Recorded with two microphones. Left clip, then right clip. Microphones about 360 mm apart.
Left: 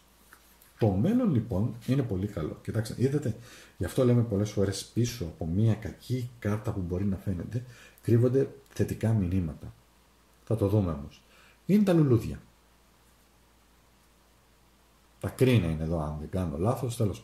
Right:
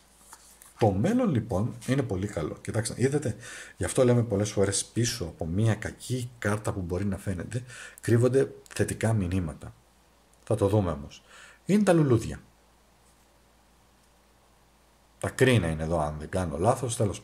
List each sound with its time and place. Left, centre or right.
1.8 s speech: centre
10.4 s speech: right
15.1 s speech: centre